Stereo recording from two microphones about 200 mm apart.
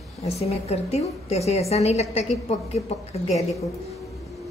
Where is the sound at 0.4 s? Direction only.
30° left (ahead or behind).